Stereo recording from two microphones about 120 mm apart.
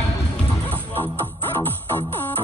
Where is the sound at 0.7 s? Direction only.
15° left (ahead or behind).